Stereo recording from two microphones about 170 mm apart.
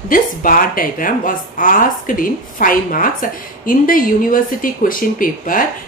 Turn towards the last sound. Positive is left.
turn(degrees=55)  # may be behind; listen again after turning